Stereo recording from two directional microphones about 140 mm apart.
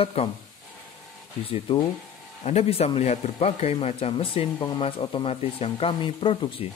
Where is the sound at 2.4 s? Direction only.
45° left (ahead or behind).